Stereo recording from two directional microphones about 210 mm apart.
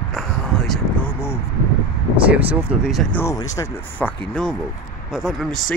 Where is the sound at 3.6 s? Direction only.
20° left (ahead or behind).